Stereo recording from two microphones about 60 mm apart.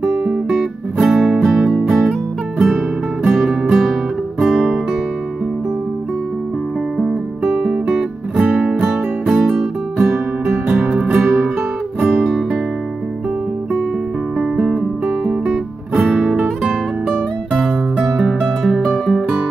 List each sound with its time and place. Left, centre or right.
0.5 s music: centre
3.3 s music: centre
7.6 s music: centre
11.1 s music: centre
14.6 s music: right
15.2 s music: centre